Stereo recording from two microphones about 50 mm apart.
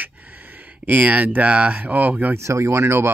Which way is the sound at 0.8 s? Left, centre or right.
Right.